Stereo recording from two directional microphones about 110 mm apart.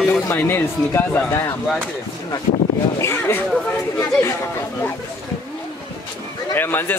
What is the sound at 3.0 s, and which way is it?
Speech, 25° left (ahead or behind).